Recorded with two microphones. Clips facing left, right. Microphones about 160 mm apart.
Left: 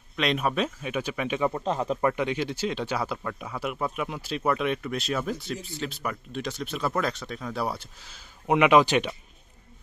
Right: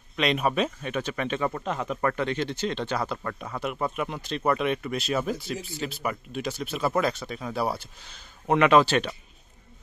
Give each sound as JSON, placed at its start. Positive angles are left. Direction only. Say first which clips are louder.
{"t": 0.1, "sound": "speech", "louder": "right 1 dB", "side_deg": 0}
{"t": 1.5, "sound": "speech", "louder": "left 3 dB", "side_deg": 30}
{"t": 2.0, "sound": "speech", "louder": "left 1 dB", "side_deg": 15}
{"t": 8.5, "sound": "speech", "louder": "even", "side_deg": 10}